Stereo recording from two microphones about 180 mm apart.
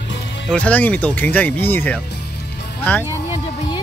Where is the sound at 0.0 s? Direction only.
75° left (ahead or behind).